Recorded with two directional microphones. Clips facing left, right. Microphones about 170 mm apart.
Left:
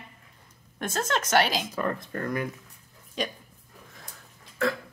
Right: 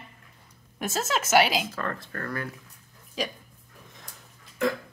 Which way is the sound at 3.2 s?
Centre (ahead or behind).